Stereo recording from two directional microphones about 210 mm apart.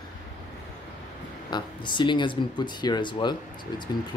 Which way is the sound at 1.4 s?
20° left (ahead or behind).